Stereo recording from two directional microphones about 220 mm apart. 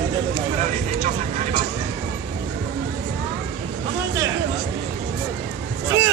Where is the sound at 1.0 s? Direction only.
35° right (ahead or behind).